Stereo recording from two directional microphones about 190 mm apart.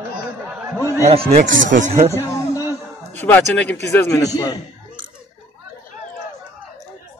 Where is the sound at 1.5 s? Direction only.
75° right (ahead or behind).